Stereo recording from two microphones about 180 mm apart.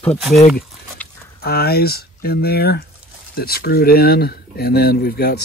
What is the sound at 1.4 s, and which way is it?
Speech, 60° left (ahead or behind).